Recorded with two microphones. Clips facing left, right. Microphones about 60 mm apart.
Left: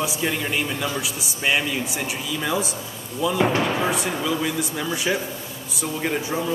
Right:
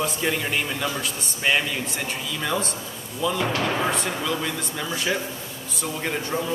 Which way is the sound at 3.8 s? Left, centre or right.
Centre.